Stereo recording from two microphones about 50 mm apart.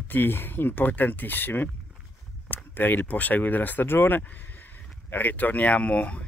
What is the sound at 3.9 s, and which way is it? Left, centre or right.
Speech, left.